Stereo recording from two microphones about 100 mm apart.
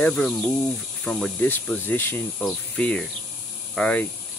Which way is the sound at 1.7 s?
20° left (ahead or behind).